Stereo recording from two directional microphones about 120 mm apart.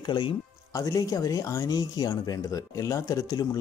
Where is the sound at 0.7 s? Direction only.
30° left (ahead or behind).